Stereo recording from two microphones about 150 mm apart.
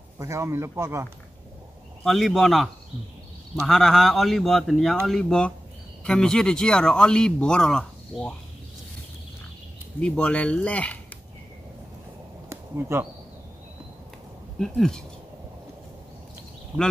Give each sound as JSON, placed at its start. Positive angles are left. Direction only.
{"t": 0.2, "sound": "speech", "side_deg": -20}
{"t": 2.0, "sound": "speech", "side_deg": 0}
{"t": 9.9, "sound": "speech", "side_deg": 5}
{"t": 12.4, "sound": "a sound", "side_deg": -20}
{"t": 14.6, "sound": "speech", "side_deg": 5}